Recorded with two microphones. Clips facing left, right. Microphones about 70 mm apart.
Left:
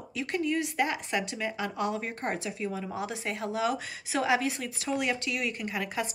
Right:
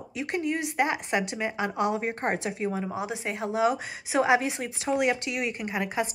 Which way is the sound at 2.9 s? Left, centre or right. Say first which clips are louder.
Right 2 dB; centre.